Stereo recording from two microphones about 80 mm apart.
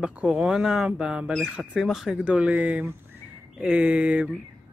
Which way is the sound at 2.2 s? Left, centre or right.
Centre.